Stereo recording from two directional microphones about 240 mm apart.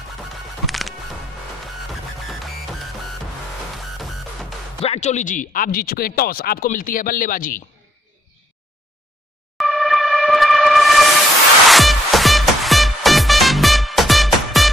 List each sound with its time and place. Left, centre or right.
0.7 s music: centre
4.0 s music: centre
4.8 s speech: left
9.6 s music: centre